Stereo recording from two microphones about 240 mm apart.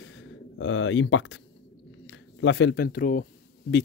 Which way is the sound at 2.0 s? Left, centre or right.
Left.